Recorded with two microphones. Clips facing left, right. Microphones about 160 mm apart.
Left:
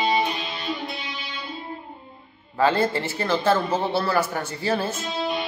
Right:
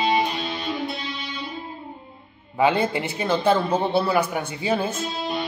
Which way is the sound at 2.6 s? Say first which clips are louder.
Even; 15° right (ahead or behind).